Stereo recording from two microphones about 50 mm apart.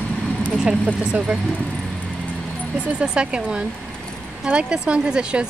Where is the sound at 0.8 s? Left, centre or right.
Right.